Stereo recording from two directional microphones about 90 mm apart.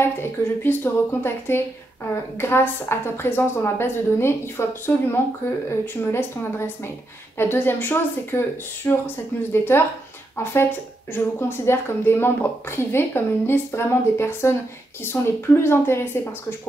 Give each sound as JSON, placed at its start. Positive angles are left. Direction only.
{"t": 0.0, "sound": "a woman's voice", "side_deg": 25}